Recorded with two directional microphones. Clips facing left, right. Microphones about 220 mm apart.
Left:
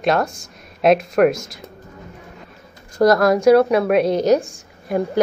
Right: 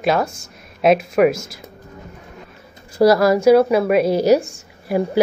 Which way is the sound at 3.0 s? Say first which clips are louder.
Right 1 dB; 5° right (ahead or behind).